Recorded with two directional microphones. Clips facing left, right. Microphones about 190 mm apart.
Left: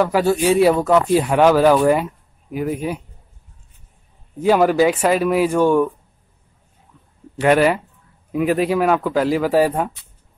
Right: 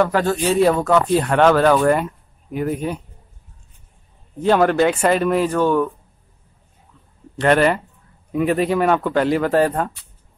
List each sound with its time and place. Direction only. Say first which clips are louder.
0.0 s speech: left 2 dB; 10° left (ahead or behind)
4.4 s speech: left 1 dB; 5° left (ahead or behind)
7.3 s speech: left 1 dB; 5° left (ahead or behind)